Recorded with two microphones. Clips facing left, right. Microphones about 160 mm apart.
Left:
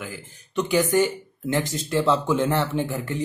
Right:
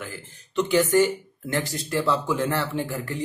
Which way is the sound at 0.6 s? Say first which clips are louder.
Right 1 dB; 15° left (ahead or behind).